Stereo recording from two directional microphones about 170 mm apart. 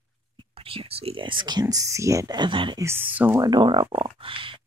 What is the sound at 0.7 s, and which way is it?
Speech, 35° right (ahead or behind).